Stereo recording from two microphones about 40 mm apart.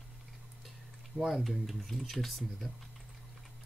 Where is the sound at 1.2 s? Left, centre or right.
Centre.